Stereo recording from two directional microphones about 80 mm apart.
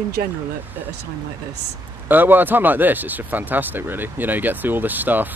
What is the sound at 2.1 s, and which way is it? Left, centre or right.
Speech, right.